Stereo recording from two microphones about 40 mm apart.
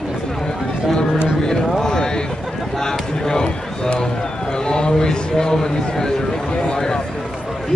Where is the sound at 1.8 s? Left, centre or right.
Centre.